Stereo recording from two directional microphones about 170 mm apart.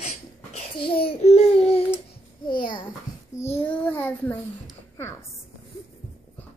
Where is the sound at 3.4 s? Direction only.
15° left (ahead or behind).